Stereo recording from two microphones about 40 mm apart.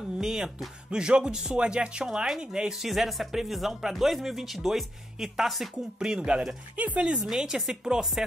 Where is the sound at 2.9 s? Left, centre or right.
Centre.